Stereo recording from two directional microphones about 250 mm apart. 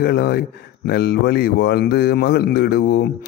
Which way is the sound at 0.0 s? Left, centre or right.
Left.